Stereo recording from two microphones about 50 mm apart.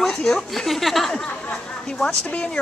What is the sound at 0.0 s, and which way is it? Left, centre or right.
A woman's voice, centre.